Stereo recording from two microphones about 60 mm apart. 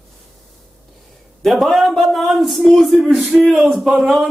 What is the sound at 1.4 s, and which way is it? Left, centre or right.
Speech, centre.